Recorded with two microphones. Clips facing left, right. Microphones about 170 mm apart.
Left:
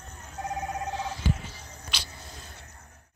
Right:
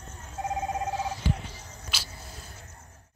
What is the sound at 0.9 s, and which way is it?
Telephone bell ringing, 10° right (ahead or behind).